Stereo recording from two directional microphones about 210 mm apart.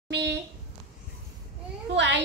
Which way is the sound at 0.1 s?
55° right (ahead or behind).